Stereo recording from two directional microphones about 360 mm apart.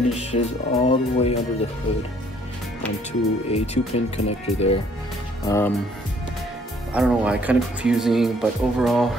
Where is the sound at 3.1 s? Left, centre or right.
Centre.